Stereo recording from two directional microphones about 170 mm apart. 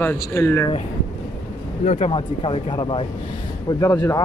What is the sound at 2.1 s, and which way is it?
Speech, 30° left (ahead or behind).